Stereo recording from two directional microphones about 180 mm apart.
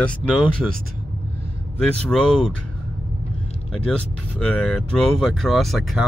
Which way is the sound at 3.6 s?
5° left (ahead or behind).